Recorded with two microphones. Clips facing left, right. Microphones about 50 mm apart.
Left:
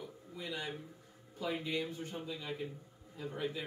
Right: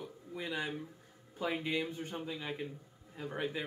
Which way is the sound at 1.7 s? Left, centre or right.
Right.